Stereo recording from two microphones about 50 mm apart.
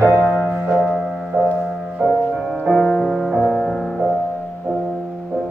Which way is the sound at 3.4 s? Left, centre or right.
Centre.